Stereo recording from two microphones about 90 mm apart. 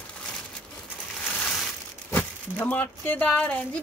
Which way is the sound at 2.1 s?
20° left (ahead or behind).